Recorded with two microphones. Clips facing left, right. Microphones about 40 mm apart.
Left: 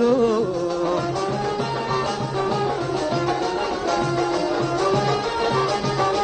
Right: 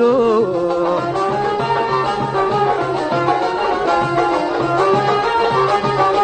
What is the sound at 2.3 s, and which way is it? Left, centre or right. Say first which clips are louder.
Music: right 7 dB; right.